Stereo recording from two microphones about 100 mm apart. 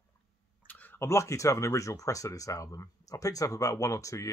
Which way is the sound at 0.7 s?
15° left (ahead or behind).